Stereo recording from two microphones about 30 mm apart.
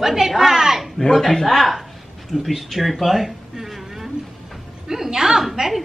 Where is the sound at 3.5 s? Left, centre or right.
Centre.